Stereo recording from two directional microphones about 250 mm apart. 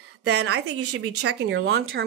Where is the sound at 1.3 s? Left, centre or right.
Right.